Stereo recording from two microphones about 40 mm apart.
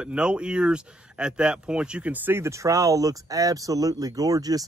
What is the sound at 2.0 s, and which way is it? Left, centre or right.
Speech, right.